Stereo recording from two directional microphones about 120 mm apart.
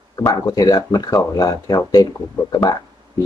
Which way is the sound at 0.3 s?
30° left (ahead or behind).